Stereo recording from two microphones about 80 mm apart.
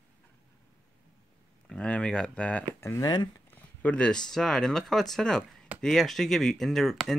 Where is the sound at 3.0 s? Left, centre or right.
Left.